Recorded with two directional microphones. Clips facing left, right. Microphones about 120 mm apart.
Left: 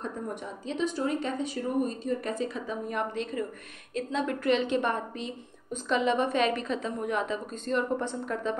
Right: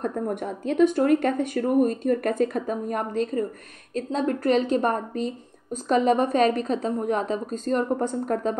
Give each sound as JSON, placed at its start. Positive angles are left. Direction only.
{"t": 0.0, "sound": "a woman's voice", "side_deg": -55}